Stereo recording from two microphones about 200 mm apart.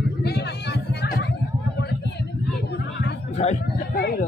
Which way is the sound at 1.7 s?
55° left (ahead or behind).